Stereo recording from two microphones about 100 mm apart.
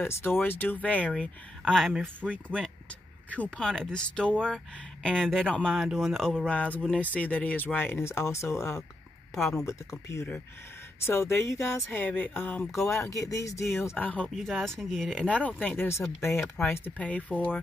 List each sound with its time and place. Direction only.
0.0 s speech: 25° left (ahead or behind); by 2.0 s centre (ahead or behind)
3.3 s speech: 10° left (ahead or behind)
6.4 s speech: 15° left (ahead or behind)
12.7 s speech: 30° left (ahead or behind)
13.8 s speech: 15° left (ahead or behind)
14.3 s speech: 5° left (ahead or behind)